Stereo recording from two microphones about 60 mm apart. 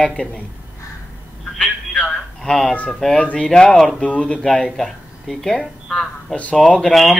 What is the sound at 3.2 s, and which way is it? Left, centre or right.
Speech, centre.